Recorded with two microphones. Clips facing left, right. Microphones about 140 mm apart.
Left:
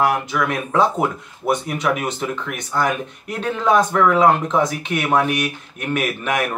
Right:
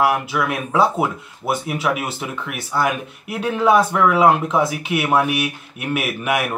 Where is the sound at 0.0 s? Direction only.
5° right (ahead or behind).